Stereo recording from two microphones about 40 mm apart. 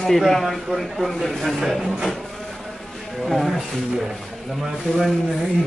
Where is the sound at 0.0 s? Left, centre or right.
Centre.